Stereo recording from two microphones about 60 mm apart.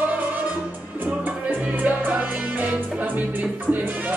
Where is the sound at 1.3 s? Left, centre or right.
Right.